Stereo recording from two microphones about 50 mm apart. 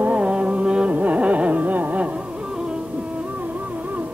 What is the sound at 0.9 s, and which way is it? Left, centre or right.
Music, right.